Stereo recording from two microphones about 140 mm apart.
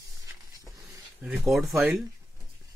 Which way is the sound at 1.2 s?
5° right (ahead or behind).